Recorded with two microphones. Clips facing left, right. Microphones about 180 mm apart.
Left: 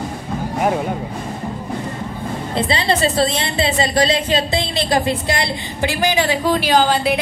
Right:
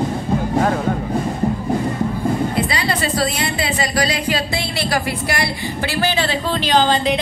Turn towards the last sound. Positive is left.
turn(degrees=10)  # may be behind; listen again after turning